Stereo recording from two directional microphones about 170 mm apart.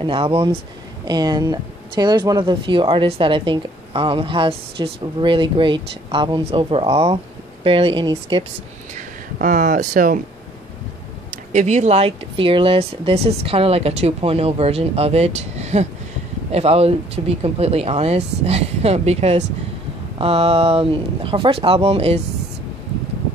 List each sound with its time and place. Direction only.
0.0 s speech: 35° right (ahead or behind)
8.9 s speech: 50° right (ahead or behind)
11.5 s speech: 45° right (ahead or behind)